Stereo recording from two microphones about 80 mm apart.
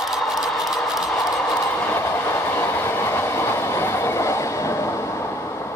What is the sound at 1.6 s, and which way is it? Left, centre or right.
Train, left.